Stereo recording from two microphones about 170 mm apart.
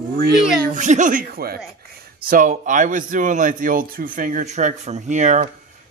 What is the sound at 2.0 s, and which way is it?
Speech, 55° right (ahead or behind).